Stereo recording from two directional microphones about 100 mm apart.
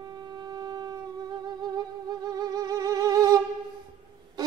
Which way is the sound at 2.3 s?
40° right (ahead or behind).